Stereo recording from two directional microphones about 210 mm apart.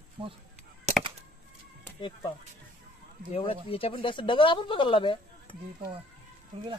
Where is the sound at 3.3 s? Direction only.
25° left (ahead or behind).